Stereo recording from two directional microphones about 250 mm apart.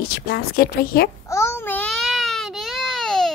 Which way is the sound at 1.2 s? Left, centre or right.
Centre.